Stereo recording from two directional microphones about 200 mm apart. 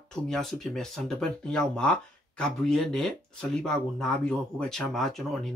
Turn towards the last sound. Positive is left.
turn(degrees=0)  # may be behind; listen again after turning